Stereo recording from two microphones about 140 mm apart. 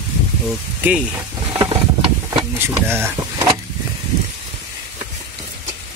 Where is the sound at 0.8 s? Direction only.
10° right (ahead or behind).